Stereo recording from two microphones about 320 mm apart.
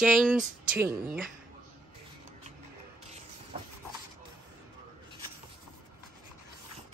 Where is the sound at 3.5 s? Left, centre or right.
Centre.